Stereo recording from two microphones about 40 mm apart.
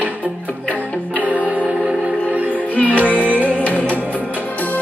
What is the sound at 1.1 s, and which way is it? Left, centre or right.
Music, right.